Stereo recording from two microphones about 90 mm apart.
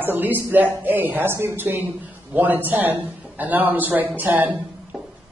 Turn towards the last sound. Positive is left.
turn(degrees=-10)  # may be behind; listen again after turning